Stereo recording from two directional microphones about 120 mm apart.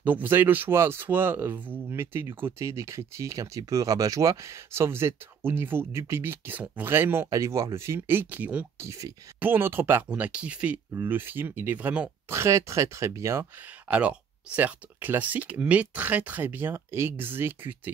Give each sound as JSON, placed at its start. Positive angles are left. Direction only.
{"t": 0.0, "sound": "speech", "side_deg": -15}
{"t": 8.7, "sound": "speech", "side_deg": -25}
{"t": 12.3, "sound": "speech", "side_deg": -25}
{"t": 13.8, "sound": "speech", "side_deg": -10}